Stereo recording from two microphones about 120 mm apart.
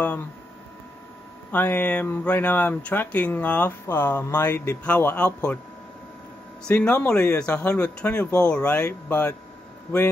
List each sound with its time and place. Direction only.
1.5 s speech: 15° left (ahead or behind)
6.6 s speech: 10° left (ahead or behind)